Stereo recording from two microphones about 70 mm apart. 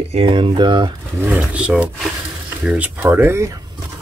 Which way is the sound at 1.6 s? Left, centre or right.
Centre.